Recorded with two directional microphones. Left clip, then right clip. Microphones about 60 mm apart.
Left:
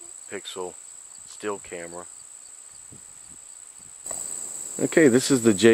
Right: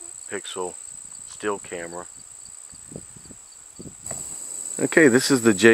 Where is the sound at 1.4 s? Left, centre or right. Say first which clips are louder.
Right 4 dB; right.